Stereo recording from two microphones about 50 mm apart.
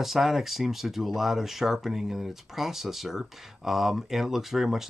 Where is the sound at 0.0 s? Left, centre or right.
Centre.